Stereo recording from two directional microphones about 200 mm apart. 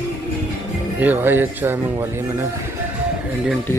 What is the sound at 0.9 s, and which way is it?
Speech, 10° right (ahead or behind).